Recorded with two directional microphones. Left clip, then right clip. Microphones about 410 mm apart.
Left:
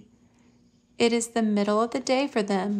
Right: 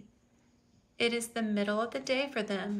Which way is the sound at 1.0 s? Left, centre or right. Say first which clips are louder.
Left 8 dB; centre.